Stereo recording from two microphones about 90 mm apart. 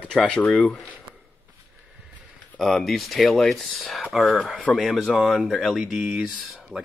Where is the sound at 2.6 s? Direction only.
Centre (ahead or behind).